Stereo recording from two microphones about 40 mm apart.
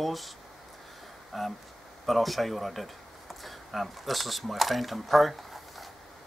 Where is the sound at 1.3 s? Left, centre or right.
Centre.